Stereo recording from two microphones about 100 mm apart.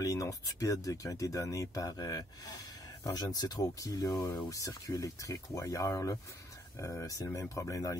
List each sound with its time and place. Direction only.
0.0 s speech: 35° left (ahead or behind)
4.5 s speech: 35° left (ahead or behind)